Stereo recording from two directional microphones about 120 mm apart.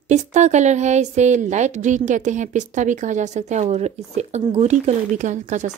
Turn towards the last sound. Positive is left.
turn(degrees=-85)